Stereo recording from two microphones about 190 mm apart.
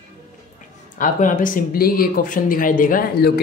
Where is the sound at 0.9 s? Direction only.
45° left (ahead or behind).